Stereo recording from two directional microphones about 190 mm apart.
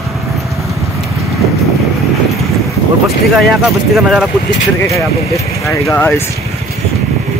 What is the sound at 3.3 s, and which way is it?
Speech, centre (ahead or behind).